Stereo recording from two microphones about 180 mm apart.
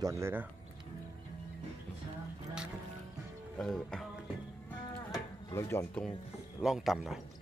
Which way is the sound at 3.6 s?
Centre (ahead or behind).